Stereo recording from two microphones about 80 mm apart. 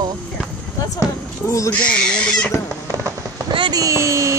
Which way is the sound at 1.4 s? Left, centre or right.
Left.